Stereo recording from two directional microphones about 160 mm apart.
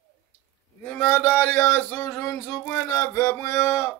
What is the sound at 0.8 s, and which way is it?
Speech, 10° left (ahead or behind).